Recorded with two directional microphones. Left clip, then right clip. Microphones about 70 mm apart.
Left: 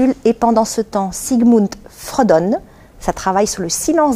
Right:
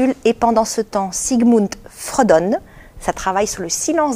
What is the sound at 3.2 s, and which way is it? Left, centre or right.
Speech, centre.